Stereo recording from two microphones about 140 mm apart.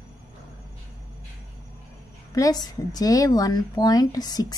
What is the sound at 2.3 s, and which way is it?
Speech, 25° left (ahead or behind).